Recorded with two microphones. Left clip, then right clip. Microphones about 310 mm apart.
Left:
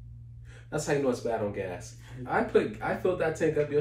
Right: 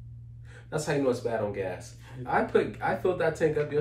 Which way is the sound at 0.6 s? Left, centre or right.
Centre.